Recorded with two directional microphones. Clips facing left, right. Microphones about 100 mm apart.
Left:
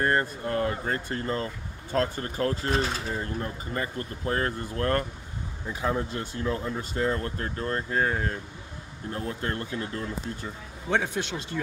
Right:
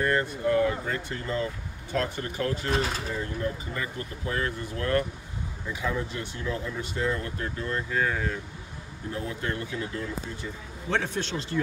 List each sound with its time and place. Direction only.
0.0 s speech: 35° left (ahead or behind)
10.9 s speech: 15° left (ahead or behind)